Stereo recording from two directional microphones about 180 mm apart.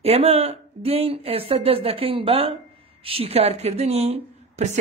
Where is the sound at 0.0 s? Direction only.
35° right (ahead or behind).